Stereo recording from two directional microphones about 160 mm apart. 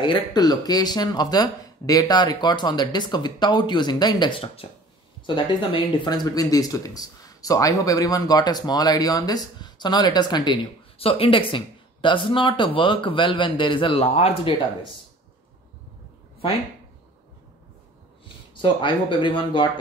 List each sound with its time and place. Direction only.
0.0 s speech: 25° left (ahead or behind)
18.5 s speech: 30° left (ahead or behind)